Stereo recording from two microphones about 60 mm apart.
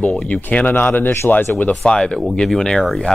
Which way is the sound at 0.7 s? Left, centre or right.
Left.